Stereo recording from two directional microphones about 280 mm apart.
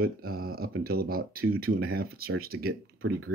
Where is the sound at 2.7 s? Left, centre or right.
Right.